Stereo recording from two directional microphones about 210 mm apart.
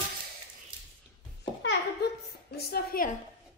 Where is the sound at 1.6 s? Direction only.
50° left (ahead or behind).